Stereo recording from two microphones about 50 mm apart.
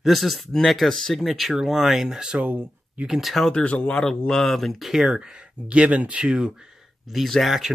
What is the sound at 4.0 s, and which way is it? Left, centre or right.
Speech, centre.